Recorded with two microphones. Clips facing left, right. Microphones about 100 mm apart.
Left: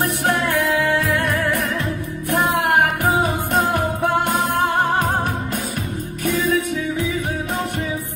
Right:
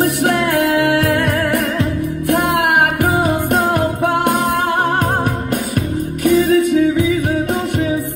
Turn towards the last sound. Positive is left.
turn(degrees=-55)  # may be behind; listen again after turning